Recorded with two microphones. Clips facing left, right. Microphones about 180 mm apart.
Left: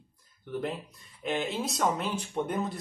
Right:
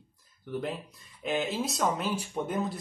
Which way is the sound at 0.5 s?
Centre (ahead or behind).